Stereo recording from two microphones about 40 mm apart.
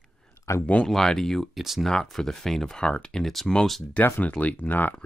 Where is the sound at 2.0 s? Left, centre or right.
Centre.